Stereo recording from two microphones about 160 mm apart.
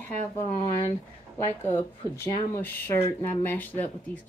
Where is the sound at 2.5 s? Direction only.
15° left (ahead or behind).